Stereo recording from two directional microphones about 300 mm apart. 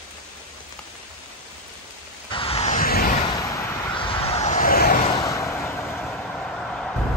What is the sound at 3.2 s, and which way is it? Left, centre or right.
Vehicle, centre.